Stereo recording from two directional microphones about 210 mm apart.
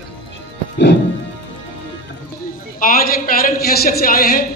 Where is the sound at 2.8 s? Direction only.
45° left (ahead or behind).